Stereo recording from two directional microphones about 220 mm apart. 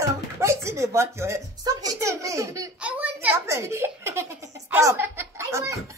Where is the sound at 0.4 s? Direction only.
10° right (ahead or behind).